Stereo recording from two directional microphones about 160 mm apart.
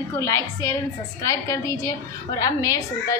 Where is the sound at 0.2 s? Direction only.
20° left (ahead or behind).